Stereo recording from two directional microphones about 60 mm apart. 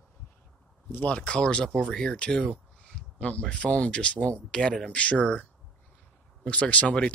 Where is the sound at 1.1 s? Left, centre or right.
Centre.